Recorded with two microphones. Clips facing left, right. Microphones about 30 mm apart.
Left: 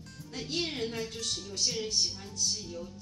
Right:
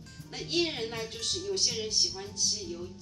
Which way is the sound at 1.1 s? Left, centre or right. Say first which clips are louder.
Right 2 dB; right.